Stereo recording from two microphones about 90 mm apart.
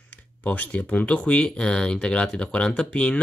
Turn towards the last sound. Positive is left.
turn(degrees=10)  # may be behind; listen again after turning